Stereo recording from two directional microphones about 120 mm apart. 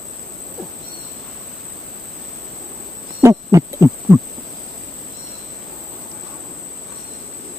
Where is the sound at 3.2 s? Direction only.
25° right (ahead or behind).